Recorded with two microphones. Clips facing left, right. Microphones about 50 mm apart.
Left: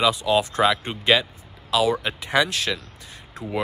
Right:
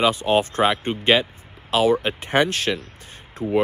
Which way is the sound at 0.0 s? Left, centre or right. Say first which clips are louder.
Right 1 dB; right.